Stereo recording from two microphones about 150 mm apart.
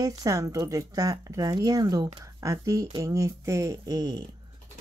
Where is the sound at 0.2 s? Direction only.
20° right (ahead or behind).